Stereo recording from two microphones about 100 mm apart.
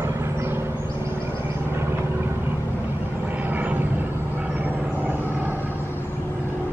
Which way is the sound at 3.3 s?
20° right (ahead or behind).